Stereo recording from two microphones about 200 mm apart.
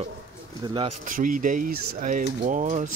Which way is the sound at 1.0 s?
40° right (ahead or behind).